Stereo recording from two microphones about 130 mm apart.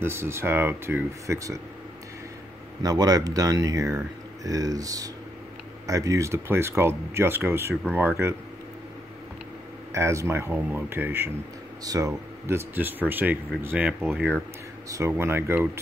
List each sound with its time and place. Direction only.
0.0 s speech: 20° right (ahead or behind)
2.8 s speech: 30° right (ahead or behind)
9.9 s speech: 20° right (ahead or behind)
11.8 s speech: 30° right (ahead or behind)
12.4 s speech: 15° right (ahead or behind)
14.9 s speech: 20° right (ahead or behind)